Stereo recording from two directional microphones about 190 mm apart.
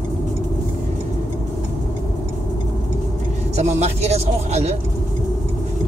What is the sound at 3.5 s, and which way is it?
Speech, 35° right (ahead or behind).